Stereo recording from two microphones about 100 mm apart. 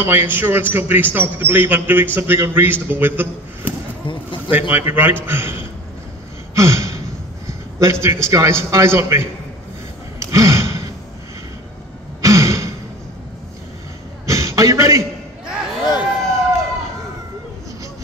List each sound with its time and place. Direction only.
0.0 s a man's voice: 20° right (ahead or behind)
6.5 s gasp: 30° right (ahead or behind)
7.4 s a man's voice: 30° right (ahead or behind)
10.1 s gasp: 30° right (ahead or behind)
12.2 s throat clearing: 30° right (ahead or behind)
14.2 s a sound: 30° right (ahead or behind)
15.4 s a sound: 45° left (ahead or behind)